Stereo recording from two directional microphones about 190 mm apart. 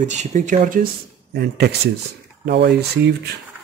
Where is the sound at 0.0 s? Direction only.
40° right (ahead or behind).